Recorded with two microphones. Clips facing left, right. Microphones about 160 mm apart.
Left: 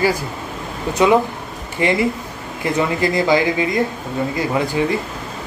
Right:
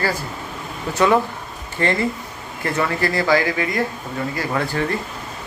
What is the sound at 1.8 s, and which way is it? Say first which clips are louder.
Speech: left 3 dB; 15° left (ahead or behind).